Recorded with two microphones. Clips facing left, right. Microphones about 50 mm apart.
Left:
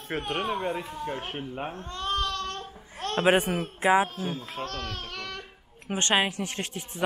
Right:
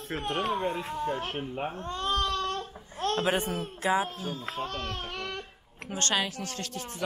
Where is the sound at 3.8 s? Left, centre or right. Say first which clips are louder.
Left 5 dB; left.